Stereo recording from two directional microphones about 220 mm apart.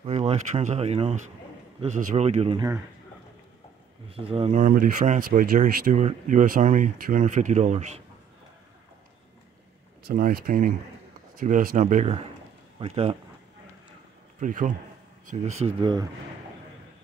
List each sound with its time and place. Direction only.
0.0 s speech: 30° right (ahead or behind)
4.1 s speech: 25° right (ahead or behind)
10.0 s speech: 40° right (ahead or behind)
14.4 s speech: 35° right (ahead or behind); by 16.1 s 20° right (ahead or behind)